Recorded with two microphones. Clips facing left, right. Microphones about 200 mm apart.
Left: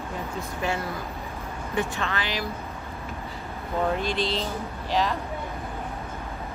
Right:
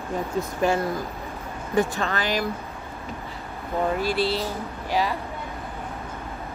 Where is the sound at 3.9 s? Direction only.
5° right (ahead or behind).